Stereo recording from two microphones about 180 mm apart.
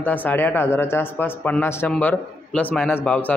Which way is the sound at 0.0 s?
10° left (ahead or behind).